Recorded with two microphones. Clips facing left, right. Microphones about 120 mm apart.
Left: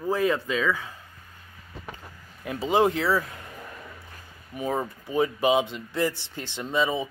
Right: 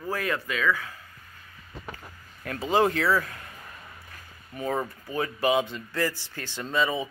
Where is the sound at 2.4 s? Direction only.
20° left (ahead or behind).